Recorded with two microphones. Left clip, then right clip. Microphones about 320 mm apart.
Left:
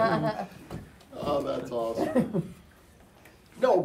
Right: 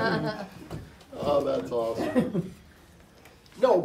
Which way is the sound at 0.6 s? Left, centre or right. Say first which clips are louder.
Right 1 dB; centre.